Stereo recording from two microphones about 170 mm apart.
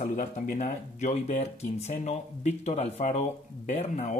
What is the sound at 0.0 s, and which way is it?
Speech, 50° left (ahead or behind).